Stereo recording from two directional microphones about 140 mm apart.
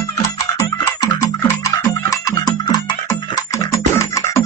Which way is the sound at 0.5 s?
20° left (ahead or behind).